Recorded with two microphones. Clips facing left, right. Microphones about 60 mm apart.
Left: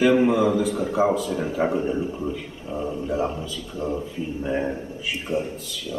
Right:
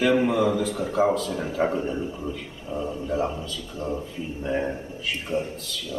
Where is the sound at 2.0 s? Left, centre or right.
Left.